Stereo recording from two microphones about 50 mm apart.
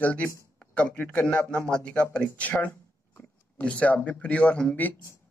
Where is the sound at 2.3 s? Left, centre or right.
Left.